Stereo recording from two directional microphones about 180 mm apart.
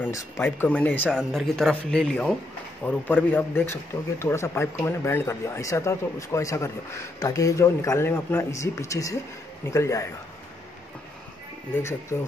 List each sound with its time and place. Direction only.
0.0 s speech: 10° left (ahead or behind)
11.7 s speech: 15° left (ahead or behind)